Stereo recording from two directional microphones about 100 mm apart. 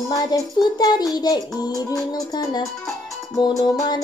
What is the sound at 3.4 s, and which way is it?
Child singing, 45° left (ahead or behind).